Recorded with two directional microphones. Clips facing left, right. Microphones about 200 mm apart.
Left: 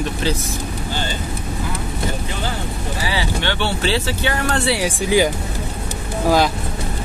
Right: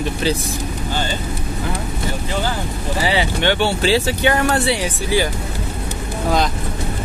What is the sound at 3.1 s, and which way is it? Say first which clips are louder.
Speech: right 5 dB; 20° right (ahead or behind).